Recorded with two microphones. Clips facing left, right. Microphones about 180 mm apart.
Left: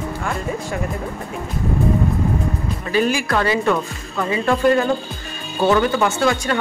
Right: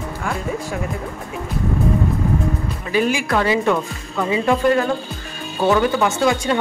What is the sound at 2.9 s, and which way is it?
A woman's voice, 15° right (ahead or behind).